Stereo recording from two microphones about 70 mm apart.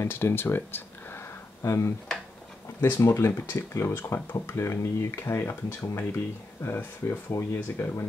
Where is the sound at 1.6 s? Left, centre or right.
Left.